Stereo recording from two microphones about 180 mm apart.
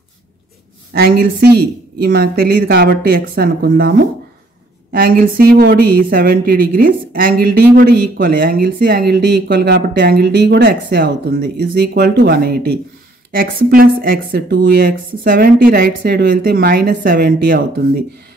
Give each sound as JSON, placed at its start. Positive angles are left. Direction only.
{"t": 0.9, "sound": "speech", "side_deg": -60}